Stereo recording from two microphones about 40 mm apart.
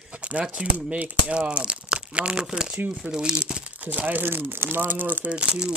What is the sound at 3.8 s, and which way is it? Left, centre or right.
Speech, right.